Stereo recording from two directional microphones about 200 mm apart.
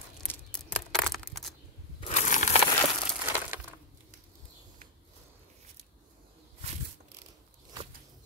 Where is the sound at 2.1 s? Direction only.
35° left (ahead or behind).